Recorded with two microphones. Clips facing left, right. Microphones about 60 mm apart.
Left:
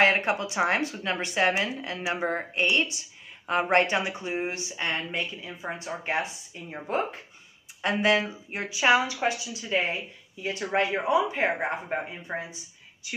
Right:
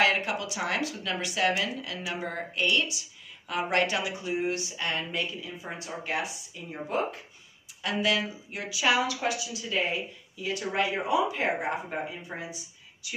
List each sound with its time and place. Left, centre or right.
0.0 s speech: left